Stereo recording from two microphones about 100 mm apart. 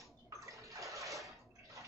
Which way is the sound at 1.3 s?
30° right (ahead or behind).